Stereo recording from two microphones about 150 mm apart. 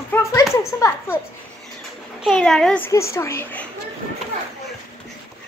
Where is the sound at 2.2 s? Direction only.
5° left (ahead or behind).